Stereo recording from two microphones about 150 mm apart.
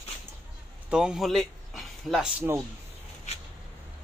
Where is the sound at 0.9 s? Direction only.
5° right (ahead or behind).